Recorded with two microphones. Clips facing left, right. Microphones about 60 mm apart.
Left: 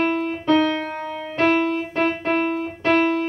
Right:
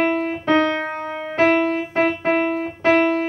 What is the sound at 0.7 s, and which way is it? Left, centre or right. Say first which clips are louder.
Music: right 2 dB; right.